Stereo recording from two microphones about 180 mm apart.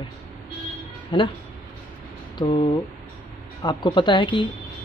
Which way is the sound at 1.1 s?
30° left (ahead or behind).